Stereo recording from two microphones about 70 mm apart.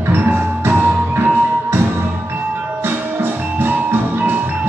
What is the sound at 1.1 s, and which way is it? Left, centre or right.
Music, right.